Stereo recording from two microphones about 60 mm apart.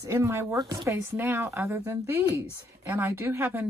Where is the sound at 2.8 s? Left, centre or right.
Right.